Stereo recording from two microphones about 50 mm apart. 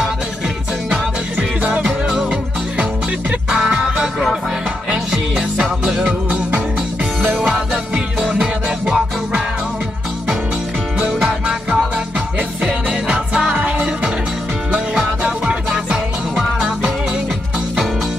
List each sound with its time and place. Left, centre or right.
1.6 s music: right
3.4 s music: centre
5.1 s music: centre
7.3 s music: centre
7.7 s music: centre
11.2 s music: right
15.4 s music: centre